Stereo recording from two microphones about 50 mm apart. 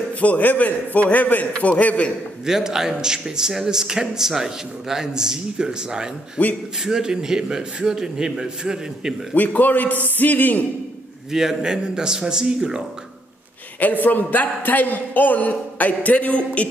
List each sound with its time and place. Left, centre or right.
0.2 s a man's voice: left
2.4 s a man's voice: centre
9.3 s a man's voice: left
11.3 s a man's voice: centre
13.7 s a man's voice: left